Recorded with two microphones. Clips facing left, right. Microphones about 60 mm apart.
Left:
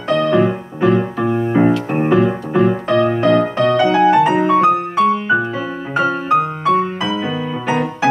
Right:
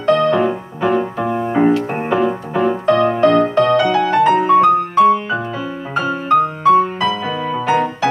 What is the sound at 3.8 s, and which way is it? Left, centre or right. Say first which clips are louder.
Music: left 2 dB; centre.